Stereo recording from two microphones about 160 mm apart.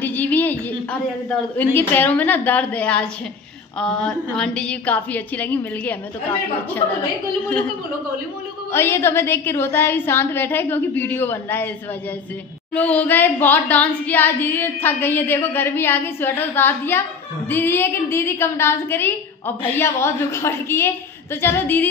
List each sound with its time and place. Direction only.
0.0 s a sound: 10° left (ahead or behind)
1.6 s a woman's voice: 10° left (ahead or behind)
8.7 s a woman's voice: 15° left (ahead or behind)
12.7 s a woman's voice: 10° left (ahead or behind)